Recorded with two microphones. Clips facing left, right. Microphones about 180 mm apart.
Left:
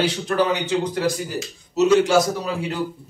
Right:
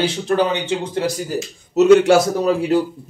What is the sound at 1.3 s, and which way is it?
Speech, 55° right (ahead or behind).